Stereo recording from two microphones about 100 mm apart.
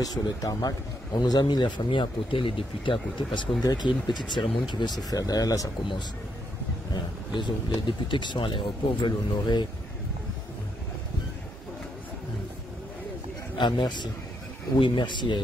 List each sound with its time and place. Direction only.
0.0 s speech: 40° left (ahead or behind); by 3.4 s 60° left (ahead or behind)
3.6 s speech: 45° left (ahead or behind)
6.9 s speech: 50° left (ahead or behind)
13.6 s speech: 45° left (ahead or behind)